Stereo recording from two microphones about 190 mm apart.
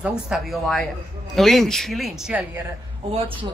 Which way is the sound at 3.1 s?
25° right (ahead or behind).